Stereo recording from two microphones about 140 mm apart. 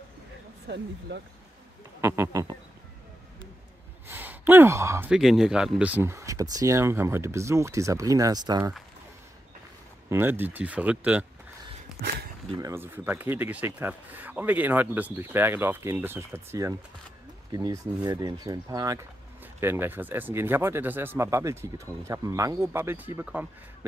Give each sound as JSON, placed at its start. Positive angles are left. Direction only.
{"t": 2.0, "sound": "speech", "side_deg": -20}
{"t": 4.1, "sound": "sigh", "side_deg": -15}
{"t": 5.1, "sound": "speech", "side_deg": 0}
{"t": 10.0, "sound": "speech", "side_deg": -15}
{"t": 12.5, "sound": "speech", "side_deg": -20}